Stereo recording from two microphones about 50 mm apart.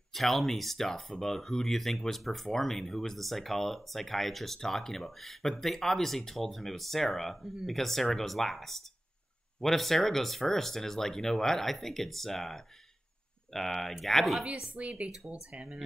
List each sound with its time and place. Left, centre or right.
0.1 s speech: centre
14.4 s speech: right